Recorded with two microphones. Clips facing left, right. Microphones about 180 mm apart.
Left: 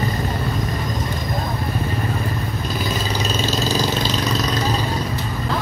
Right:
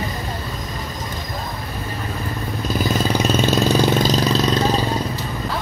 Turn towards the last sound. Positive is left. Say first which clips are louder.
# right 4 dB
turn(degrees=-55)  # may be behind; listen again after turning